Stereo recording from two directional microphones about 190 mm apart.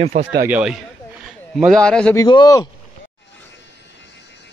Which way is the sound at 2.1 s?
20° left (ahead or behind).